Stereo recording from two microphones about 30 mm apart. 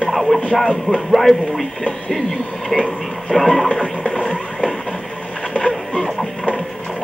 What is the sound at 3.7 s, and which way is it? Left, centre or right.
Music, left.